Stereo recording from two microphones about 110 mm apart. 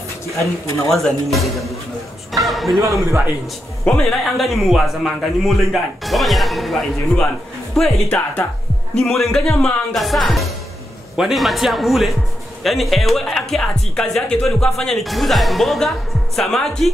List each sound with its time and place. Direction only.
0.4 s a man's voice: 25° left (ahead or behind)
0.9 s a man's voice: centre (ahead or behind)
2.8 s speech: 30° right (ahead or behind)
3.8 s a man's voice: 5° left (ahead or behind)